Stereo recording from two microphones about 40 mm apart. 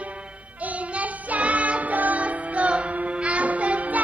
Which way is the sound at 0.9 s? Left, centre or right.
Right.